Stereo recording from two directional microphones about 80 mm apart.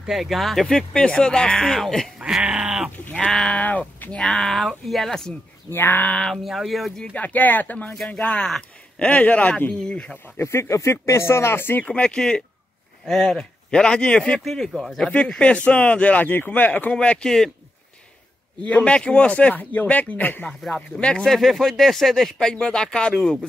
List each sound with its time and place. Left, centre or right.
0.0 s speech: centre
2.1 s speech: centre
3.3 s speech: centre
3.5 s speech: centre
4.2 s speech: centre
5.7 s speech: left
6.3 s speech: centre
7.0 s speech: centre
10.4 s speech: left
11.8 s speech: centre
14.4 s speech: centre
15.0 s speech: centre
18.6 s speech: centre
20.4 s speech: centre